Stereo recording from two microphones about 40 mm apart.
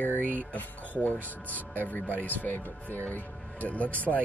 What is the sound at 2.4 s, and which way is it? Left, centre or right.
Speech, left.